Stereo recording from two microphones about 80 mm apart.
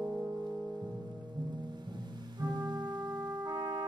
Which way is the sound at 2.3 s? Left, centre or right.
Right.